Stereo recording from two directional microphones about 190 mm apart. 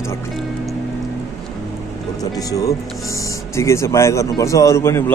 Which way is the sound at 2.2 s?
20° left (ahead or behind).